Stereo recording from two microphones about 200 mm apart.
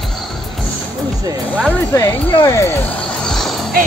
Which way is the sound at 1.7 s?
10° left (ahead or behind).